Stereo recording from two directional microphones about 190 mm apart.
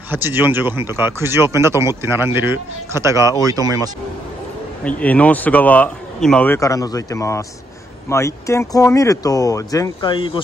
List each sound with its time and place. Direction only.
0.1 s speech: 10° right (ahead or behind)
4.8 s speech: 5° left (ahead or behind); by 10.4 s 25° left (ahead or behind)